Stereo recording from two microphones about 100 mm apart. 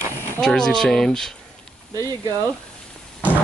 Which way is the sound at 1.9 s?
40° right (ahead or behind).